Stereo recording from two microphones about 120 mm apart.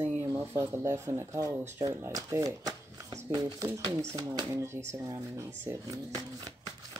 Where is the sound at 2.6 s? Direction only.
30° right (ahead or behind).